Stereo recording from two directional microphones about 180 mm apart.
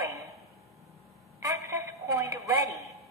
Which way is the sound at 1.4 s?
15° right (ahead or behind).